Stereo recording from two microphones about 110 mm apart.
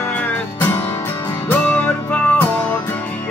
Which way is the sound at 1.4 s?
15° left (ahead or behind).